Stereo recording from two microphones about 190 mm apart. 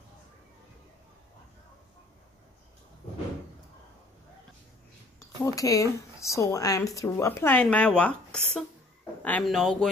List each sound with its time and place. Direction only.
5.4 s speech: 15° left (ahead or behind); by 9.8 s centre (ahead or behind)